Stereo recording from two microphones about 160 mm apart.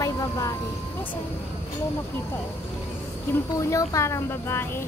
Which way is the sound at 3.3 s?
20° left (ahead or behind).